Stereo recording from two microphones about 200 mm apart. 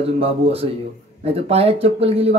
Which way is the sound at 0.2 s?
30° right (ahead or behind).